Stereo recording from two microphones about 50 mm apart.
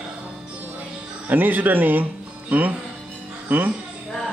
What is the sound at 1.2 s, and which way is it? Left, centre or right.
Speech, right.